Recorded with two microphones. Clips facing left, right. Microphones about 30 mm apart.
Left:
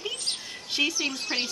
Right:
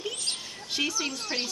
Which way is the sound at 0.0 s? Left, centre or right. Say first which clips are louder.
Left 1 dB; centre.